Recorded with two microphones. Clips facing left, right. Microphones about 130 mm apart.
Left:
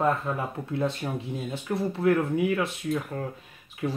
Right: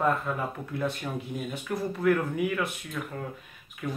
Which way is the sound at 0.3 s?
25° left (ahead or behind).